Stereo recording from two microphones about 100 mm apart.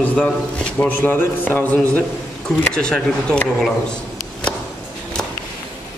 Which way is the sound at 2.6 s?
10° left (ahead or behind).